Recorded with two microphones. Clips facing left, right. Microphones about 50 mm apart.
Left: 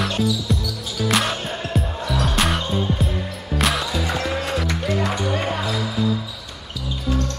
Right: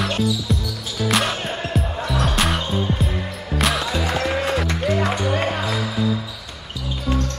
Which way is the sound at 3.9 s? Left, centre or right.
Centre.